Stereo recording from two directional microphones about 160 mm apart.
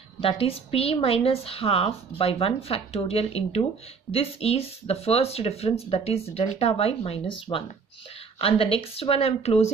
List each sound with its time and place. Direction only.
0.2 s a woman's voice: 35° left (ahead or behind)